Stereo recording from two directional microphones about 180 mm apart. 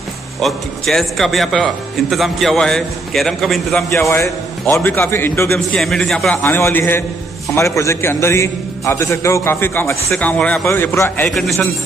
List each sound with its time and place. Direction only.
0.4 s a man's voice: centre (ahead or behind)
4.1 s a man's voice: 15° left (ahead or behind)
5.5 s a man's voice: centre (ahead or behind)
11.2 s a man's voice: centre (ahead or behind)